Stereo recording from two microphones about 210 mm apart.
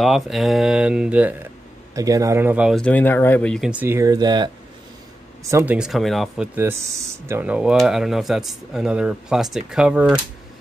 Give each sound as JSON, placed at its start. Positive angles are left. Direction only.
{"t": 0.0, "sound": "speech", "side_deg": 0}
{"t": 3.8, "sound": "speech", "side_deg": -15}